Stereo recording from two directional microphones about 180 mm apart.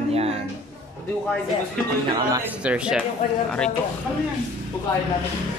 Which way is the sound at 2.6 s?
5° right (ahead or behind).